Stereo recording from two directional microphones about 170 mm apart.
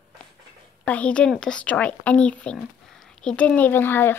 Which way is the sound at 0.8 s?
10° left (ahead or behind).